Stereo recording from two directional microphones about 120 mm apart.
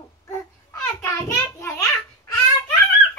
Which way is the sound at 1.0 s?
25° left (ahead or behind).